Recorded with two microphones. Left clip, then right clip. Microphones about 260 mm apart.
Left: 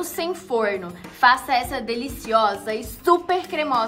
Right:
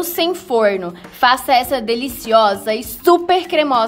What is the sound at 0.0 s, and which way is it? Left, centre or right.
A woman's voice, right.